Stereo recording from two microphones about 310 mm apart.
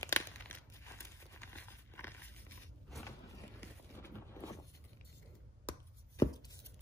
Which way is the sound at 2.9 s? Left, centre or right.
Centre.